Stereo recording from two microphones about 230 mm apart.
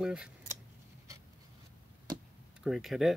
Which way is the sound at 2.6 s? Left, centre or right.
Centre.